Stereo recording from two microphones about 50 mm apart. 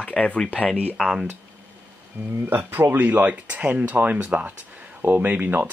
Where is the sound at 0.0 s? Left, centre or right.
Left.